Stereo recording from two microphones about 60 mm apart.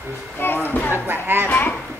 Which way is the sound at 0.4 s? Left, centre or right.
Left.